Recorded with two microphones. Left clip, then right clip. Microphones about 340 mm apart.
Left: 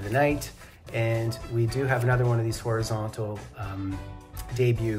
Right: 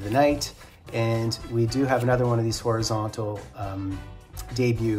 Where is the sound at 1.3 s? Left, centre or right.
Centre.